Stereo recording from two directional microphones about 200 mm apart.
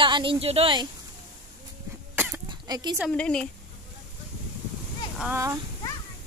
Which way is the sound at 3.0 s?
5° left (ahead or behind).